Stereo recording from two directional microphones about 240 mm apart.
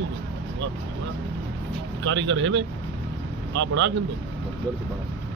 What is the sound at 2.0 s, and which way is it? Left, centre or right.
Speech, right.